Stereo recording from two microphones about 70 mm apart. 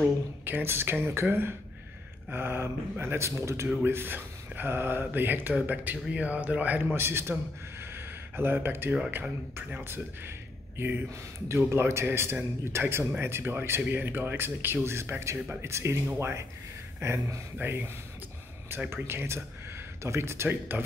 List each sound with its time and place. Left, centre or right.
0.5 s a man's voice: right
7.0 s speech: right
7.8 s gasp: right
9.7 s speech: right
11.4 s speech: right